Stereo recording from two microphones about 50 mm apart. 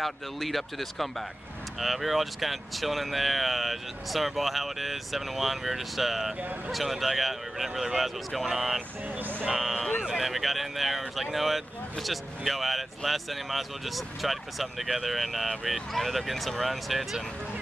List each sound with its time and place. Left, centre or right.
0.0 s speech: centre
9.1 s speech: right
9.5 s speech: centre